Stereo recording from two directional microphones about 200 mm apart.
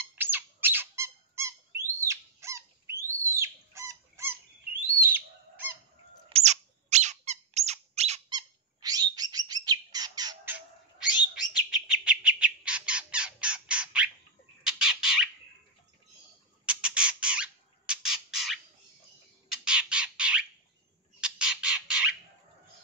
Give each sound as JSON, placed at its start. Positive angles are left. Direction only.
{"t": 0.0, "sound": "squeak", "side_deg": -10}
{"t": 6.2, "sound": "squeak", "side_deg": -30}
{"t": 8.3, "sound": "bird", "side_deg": -20}
{"t": 11.9, "sound": "squawk", "side_deg": -5}
{"t": 16.6, "sound": "squawk", "side_deg": -5}
{"t": 19.6, "sound": "squawk", "side_deg": -5}
{"t": 21.2, "sound": "chicken", "side_deg": -5}